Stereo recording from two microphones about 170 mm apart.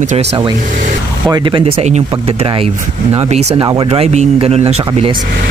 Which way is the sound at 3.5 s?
25° right (ahead or behind).